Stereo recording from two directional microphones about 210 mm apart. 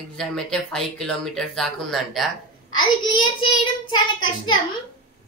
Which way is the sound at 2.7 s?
20° left (ahead or behind).